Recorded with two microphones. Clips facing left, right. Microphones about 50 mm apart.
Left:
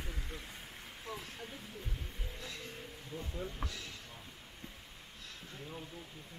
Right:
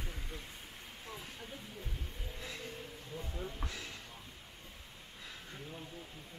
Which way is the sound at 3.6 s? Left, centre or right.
Right.